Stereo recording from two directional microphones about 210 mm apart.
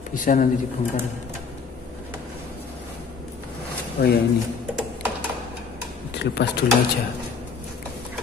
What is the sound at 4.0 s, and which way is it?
Speech, 50° left (ahead or behind).